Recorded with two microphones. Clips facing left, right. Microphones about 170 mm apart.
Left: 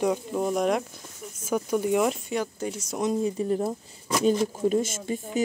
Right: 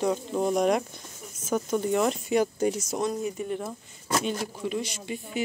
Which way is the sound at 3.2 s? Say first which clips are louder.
Left 5 dB; 30° left (ahead or behind).